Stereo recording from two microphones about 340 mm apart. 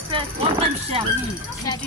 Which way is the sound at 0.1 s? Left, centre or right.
Centre.